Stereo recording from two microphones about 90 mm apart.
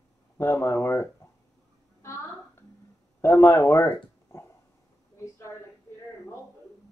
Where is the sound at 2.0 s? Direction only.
30° left (ahead or behind).